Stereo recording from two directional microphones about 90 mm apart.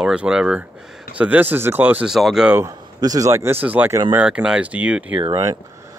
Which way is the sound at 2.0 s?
5° right (ahead or behind).